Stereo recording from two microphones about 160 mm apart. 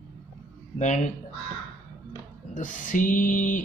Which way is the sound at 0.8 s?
50° left (ahead or behind).